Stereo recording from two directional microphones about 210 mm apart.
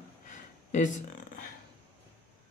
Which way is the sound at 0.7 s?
35° left (ahead or behind).